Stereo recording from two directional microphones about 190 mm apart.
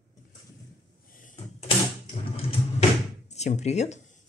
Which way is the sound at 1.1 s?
40° left (ahead or behind).